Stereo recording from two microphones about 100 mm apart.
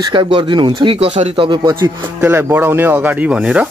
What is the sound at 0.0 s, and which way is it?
Speech, 50° right (ahead or behind).